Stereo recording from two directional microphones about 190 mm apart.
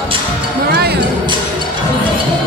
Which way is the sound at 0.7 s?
55° right (ahead or behind).